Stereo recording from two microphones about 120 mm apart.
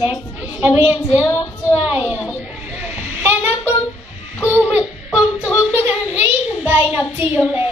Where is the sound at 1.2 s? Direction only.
20° left (ahead or behind).